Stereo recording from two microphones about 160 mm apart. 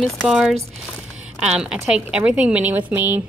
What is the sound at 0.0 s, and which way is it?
A woman's voice, centre (ahead or behind).